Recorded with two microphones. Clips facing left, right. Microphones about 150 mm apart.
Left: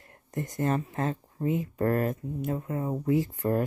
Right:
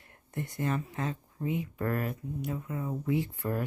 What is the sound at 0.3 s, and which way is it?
Speech, 40° left (ahead or behind).